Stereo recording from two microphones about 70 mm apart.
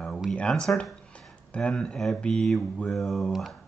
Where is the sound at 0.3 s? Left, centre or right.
Centre.